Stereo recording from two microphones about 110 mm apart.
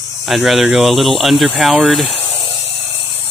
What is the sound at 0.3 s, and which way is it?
Speech, centre (ahead or behind).